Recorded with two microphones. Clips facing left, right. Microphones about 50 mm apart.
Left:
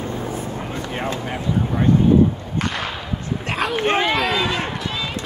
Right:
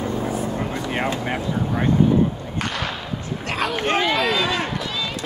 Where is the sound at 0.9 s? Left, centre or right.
Right.